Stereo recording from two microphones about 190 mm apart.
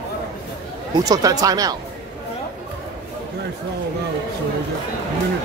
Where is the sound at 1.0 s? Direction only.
20° right (ahead or behind).